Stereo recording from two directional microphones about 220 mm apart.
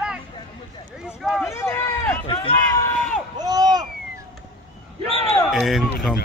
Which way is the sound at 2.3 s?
25° left (ahead or behind).